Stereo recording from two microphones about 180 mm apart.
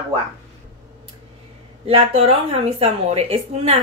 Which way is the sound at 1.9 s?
30° right (ahead or behind).